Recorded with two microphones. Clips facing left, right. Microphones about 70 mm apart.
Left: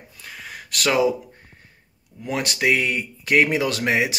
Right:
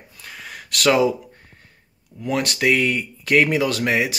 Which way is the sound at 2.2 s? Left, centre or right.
Centre.